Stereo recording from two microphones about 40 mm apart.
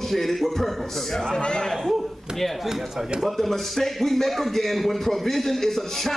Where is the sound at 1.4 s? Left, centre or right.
Left.